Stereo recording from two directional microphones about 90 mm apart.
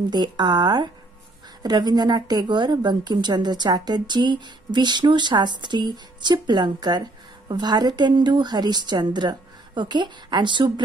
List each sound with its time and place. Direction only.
0.1 s a woman's voice: 50° right (ahead or behind)